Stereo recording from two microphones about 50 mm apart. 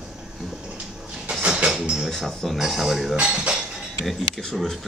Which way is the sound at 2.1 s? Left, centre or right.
Centre.